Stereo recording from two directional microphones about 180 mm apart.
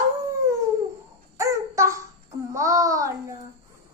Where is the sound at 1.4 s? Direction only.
15° right (ahead or behind).